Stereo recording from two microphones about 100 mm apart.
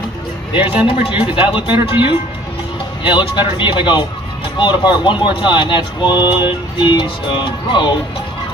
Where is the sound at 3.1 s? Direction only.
55° left (ahead or behind).